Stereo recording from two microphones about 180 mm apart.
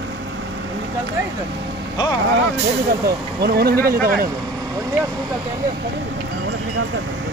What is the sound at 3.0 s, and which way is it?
Speech, 60° right (ahead or behind).